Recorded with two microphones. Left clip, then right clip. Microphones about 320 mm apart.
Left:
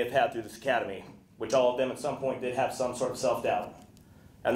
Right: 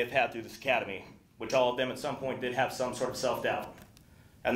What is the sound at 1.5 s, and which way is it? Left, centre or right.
Speech, right.